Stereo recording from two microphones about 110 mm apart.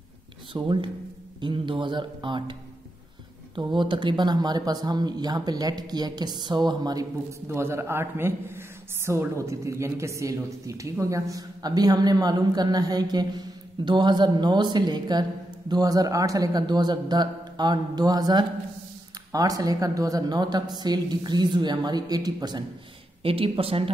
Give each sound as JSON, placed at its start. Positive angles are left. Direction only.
{"t": 0.5, "sound": "speech", "side_deg": -50}
{"t": 3.5, "sound": "speech", "side_deg": -45}
{"t": 7.4, "sound": "a man's voice", "side_deg": -25}
{"t": 23.2, "sound": "speech", "side_deg": -55}